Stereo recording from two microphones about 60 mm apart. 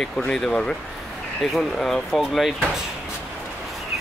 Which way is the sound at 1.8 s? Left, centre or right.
Centre.